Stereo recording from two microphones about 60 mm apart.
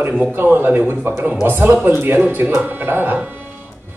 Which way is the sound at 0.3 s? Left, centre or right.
Right.